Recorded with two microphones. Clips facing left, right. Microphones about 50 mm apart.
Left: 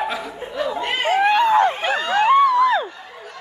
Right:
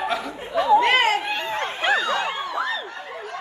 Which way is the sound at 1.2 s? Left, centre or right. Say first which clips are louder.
Left 12 dB; left.